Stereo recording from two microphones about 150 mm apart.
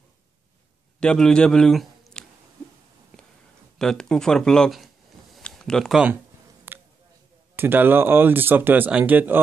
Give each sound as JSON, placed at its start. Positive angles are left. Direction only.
{"t": 0.9, "sound": "a man's voice", "side_deg": 5}
{"t": 3.7, "sound": "speech", "side_deg": 5}
{"t": 6.7, "sound": "a sound", "side_deg": -15}
{"t": 7.5, "sound": "speech", "side_deg": -15}